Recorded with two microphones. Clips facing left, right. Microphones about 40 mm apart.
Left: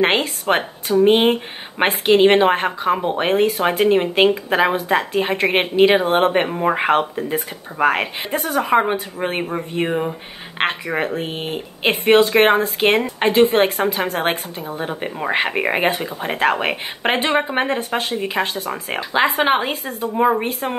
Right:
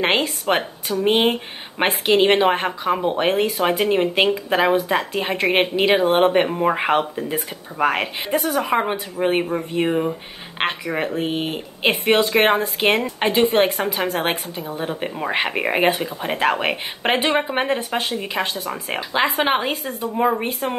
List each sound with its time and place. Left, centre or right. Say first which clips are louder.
0.0 s speech: left 2 dB; centre
11.1 s speech: right 2 dB; centre